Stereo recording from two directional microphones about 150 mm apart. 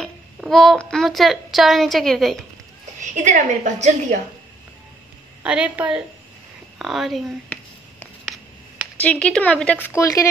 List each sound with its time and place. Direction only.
0.4 s a child's voice: centre (ahead or behind)
3.0 s a woman's voice: 55° right (ahead or behind)
5.4 s a woman's voice: 10° right (ahead or behind)
9.0 s speech: 5° left (ahead or behind)
9.8 s speech: 20° left (ahead or behind)